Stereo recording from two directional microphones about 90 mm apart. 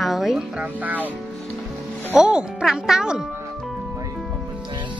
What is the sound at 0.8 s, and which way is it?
Speech, 20° right (ahead or behind).